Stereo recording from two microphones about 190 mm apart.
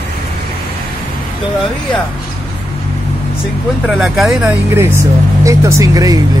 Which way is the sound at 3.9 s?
Centre (ahead or behind).